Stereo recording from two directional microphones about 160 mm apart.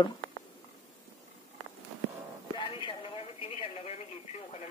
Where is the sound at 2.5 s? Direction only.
30° left (ahead or behind).